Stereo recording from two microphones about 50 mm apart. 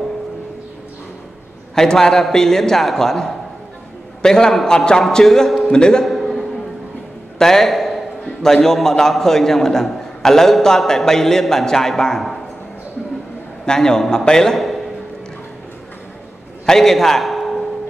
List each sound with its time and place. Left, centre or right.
1.8 s a man's voice: centre
6.0 s a sound: centre
8.6 s a man's voice: centre
13.7 s a man's voice: centre
16.6 s a man's voice: centre